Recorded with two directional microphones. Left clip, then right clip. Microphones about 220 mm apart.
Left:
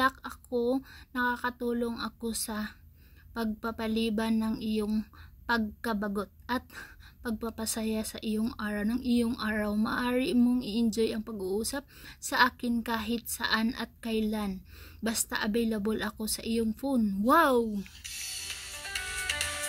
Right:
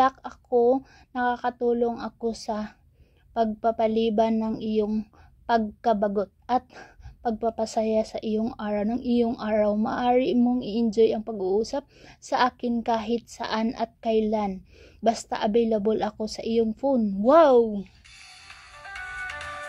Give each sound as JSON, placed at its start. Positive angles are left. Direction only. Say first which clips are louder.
{"t": 0.0, "sound": "a sound", "louder": "right 6 dB", "side_deg": 25}
{"t": 0.7, "sound": "a woman's voice", "louder": "right 9 dB", "side_deg": 30}
{"t": 17.0, "sound": "music", "louder": "right 6 dB", "side_deg": 25}